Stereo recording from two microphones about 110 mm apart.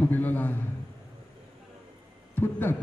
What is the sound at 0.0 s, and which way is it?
Speech, 15° left (ahead or behind).